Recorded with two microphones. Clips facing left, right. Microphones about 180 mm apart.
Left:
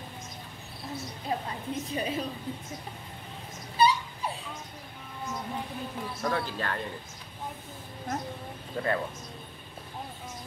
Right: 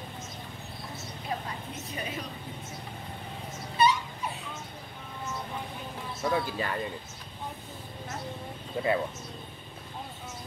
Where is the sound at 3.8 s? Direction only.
30° left (ahead or behind).